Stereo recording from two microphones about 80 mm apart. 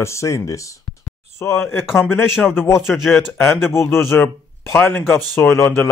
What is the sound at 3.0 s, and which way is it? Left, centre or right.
Speech, centre.